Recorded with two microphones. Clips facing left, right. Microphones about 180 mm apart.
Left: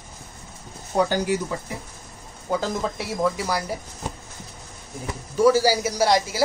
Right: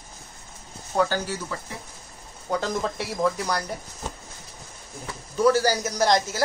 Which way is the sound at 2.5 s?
5° left (ahead or behind).